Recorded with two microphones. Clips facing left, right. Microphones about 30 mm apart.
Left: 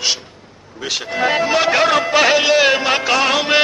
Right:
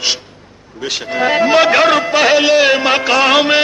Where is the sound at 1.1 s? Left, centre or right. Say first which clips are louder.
Right 5 dB; centre.